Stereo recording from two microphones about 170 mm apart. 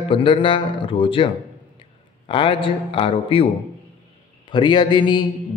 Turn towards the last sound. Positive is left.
turn(degrees=25)  # may be behind; listen again after turning